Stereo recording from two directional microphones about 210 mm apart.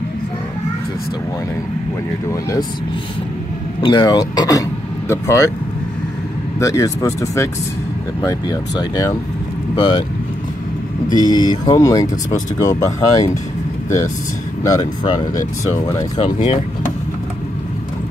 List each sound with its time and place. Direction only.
3.8 s speech: 20° left (ahead or behind)
6.6 s speech: 15° left (ahead or behind)
11.1 s speech: 20° left (ahead or behind)
14.6 s speech: 15° left (ahead or behind)
16.2 s speech: 25° left (ahead or behind)